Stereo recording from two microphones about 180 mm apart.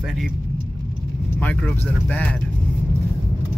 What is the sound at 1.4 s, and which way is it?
Speech, 10° left (ahead or behind).